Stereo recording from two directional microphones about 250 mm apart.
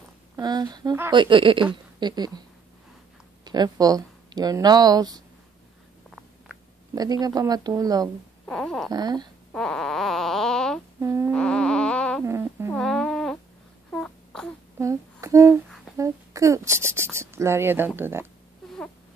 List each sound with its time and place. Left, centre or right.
0.4 s speech: centre
3.4 s speech: centre
7.0 s speech: centre
8.5 s a sound: centre
8.9 s speech: centre
9.5 s a sound: centre
11.0 s humming: centre
11.3 s music: centre
12.3 s a sound: centre
12.7 s a sound: centre
14.8 s humming: centre
16.0 s speech: centre